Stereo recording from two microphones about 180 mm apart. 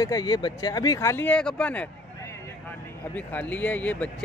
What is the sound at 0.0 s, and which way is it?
Speech, 20° left (ahead or behind).